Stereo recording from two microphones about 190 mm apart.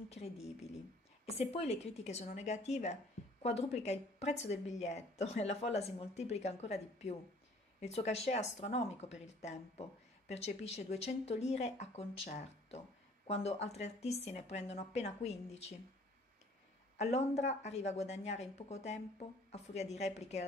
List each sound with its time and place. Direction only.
0.1 s a woman's voice: 35° left (ahead or behind)
16.9 s a woman's voice: 35° left (ahead or behind)